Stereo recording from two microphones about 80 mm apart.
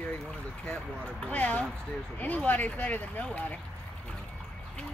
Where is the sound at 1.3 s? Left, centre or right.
Centre.